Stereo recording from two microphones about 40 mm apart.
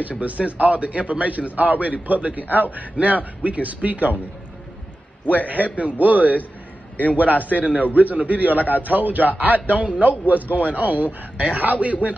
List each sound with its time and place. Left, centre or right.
0.2 s a man's voice: right
5.2 s a man's voice: left
5.5 s speech: right
7.2 s a man's voice: left
7.6 s a man's voice: right